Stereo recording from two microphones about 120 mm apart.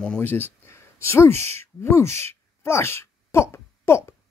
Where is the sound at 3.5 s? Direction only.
25° left (ahead or behind).